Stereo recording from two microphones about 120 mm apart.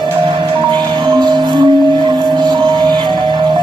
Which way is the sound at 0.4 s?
40° right (ahead or behind).